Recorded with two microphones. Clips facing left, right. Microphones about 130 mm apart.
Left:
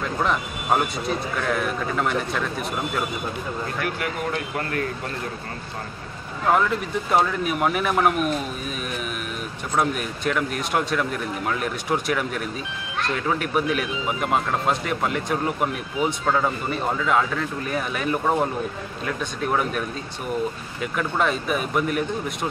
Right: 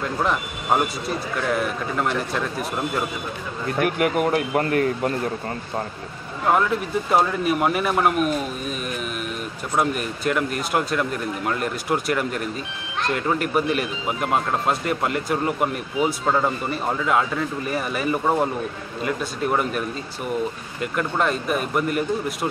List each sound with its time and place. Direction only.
0.0 s a man's voice: centre (ahead or behind)
3.7 s speech: 50° right (ahead or behind)
4.6 s speech: 30° right (ahead or behind)
6.4 s a man's voice: centre (ahead or behind)
9.8 s a man's voice: 5° right (ahead or behind)
20.8 s a man's voice: centre (ahead or behind)